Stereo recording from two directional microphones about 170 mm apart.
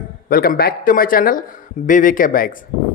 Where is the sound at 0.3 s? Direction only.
60° left (ahead or behind).